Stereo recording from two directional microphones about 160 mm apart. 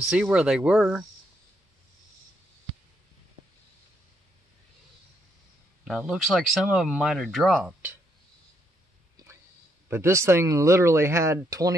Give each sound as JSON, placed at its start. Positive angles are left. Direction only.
{"t": 0.1, "sound": "speech", "side_deg": -5}
{"t": 5.9, "sound": "speech", "side_deg": 0}
{"t": 9.1, "sound": "a sound", "side_deg": -15}
{"t": 9.8, "sound": "speech", "side_deg": -15}